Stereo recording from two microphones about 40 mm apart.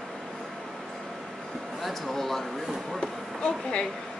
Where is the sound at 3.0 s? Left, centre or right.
Left.